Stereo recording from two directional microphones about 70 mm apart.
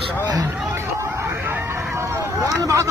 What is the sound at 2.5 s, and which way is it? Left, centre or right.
Speech, right.